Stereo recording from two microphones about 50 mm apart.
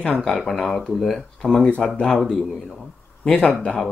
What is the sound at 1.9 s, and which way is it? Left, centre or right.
Mantra, centre.